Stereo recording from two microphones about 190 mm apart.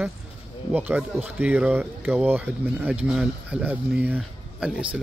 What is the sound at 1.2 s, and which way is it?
Speech, 10° right (ahead or behind).